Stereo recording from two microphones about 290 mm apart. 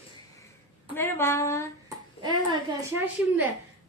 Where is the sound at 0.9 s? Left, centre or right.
Centre.